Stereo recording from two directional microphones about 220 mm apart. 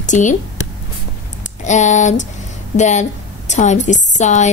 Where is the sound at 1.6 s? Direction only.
35° left (ahead or behind).